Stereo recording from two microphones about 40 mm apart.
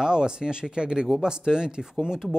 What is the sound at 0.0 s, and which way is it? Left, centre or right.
Speech, centre.